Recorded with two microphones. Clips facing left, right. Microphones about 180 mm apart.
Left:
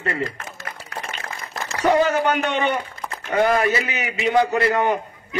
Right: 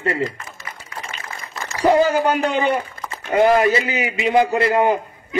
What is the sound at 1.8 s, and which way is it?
A man's voice, 30° right (ahead or behind).